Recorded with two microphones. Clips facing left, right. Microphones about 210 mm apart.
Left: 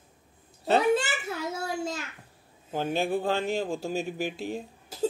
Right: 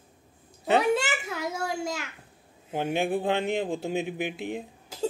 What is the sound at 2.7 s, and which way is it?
Speech, 15° right (ahead or behind).